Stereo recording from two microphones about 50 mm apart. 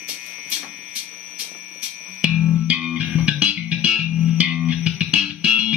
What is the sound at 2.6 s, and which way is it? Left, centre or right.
Music, centre.